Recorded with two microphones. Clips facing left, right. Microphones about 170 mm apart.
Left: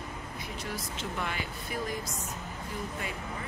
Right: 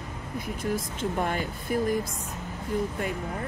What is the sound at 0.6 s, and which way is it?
Speech, 50° right (ahead or behind).